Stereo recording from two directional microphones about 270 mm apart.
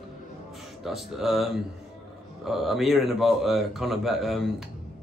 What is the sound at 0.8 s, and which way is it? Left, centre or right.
Speech, centre.